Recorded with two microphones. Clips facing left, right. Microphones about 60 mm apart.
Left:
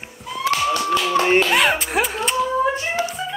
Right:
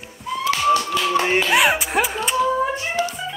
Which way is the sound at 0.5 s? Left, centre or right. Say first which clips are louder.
Right 1 dB; left.